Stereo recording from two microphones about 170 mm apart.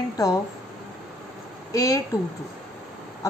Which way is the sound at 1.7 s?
20° left (ahead or behind).